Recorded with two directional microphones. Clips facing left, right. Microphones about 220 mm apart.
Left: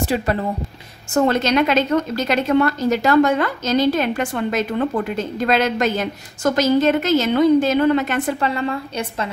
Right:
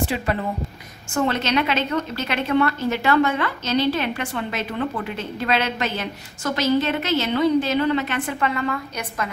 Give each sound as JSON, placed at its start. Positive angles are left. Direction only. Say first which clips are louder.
{"t": 0.0, "sound": "a woman's voice", "louder": "left 3 dB", "side_deg": 40}
{"t": 8.4, "sound": "a woman's voice", "louder": "left 2 dB", "side_deg": 30}